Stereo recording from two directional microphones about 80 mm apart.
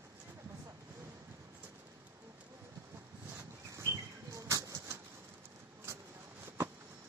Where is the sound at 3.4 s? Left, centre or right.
Right.